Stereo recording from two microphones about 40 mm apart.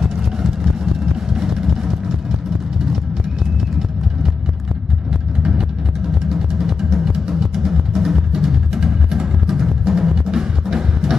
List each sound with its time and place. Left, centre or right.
1.3 s vehicle: centre
5.4 s music: right